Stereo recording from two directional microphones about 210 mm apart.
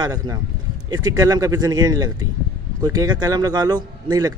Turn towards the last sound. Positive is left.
turn(degrees=-20)  # may be behind; listen again after turning